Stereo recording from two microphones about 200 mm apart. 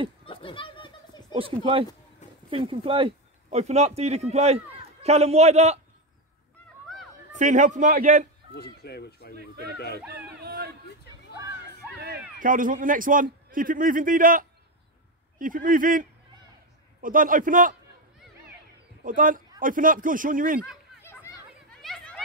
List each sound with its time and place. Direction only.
0.2 s a sound: 25° left (ahead or behind)
1.3 s a man's voice: 25° right (ahead or behind)
7.3 s a man's voice: 40° right (ahead or behind)
8.8 s speech: 55° left (ahead or behind)
9.3 s a man's voice: 55° right (ahead or behind)
12.4 s a man's voice: 40° right (ahead or behind)
19.0 s a man's voice: 45° right (ahead or behind)
21.0 s chatter: 10° left (ahead or behind)
21.8 s a sound: 5° left (ahead or behind)